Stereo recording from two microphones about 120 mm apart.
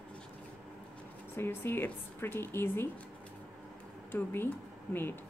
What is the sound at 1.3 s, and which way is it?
Speech, 20° left (ahead or behind).